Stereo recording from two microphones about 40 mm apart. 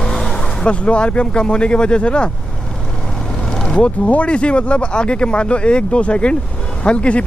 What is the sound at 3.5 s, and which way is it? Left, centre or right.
Vehicle, centre.